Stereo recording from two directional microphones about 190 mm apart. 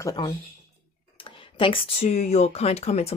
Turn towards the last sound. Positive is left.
turn(degrees=35)  # may be behind; listen again after turning